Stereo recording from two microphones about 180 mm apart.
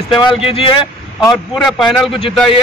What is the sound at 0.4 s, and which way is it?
Speech, 30° left (ahead or behind).